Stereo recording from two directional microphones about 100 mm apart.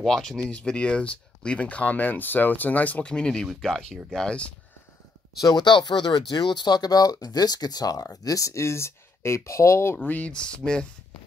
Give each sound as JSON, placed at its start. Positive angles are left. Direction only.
{"t": 0.0, "sound": "speech", "side_deg": 5}
{"t": 5.4, "sound": "speech", "side_deg": 45}
{"t": 10.0, "sound": "speech", "side_deg": 15}